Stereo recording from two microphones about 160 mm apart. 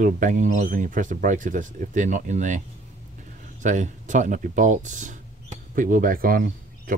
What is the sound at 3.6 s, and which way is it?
Speech, 50° right (ahead or behind).